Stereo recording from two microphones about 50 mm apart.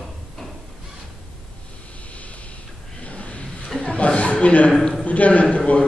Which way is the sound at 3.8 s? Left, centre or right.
Left.